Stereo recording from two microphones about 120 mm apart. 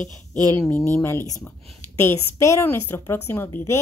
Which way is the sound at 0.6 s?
15° left (ahead or behind).